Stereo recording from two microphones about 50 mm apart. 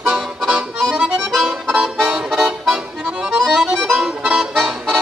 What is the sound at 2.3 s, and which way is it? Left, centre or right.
Music, centre.